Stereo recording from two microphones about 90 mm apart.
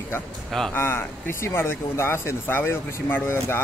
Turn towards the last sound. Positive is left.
turn(degrees=25)  # may be behind; listen again after turning